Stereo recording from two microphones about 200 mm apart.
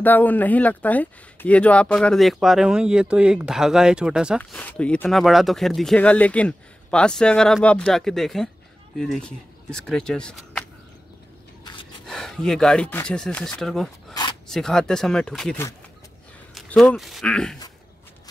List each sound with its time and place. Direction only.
0.0 s speech: 10° left (ahead or behind)
4.4 s speech: 5° left (ahead or behind)
11.6 s a sound: 25° left (ahead or behind)
12.1 s speech: centre (ahead or behind)